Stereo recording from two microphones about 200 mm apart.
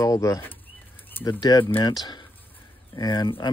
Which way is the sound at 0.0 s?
15° left (ahead or behind).